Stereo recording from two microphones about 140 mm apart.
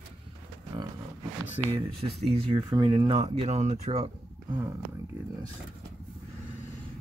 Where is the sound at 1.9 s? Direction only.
45° right (ahead or behind).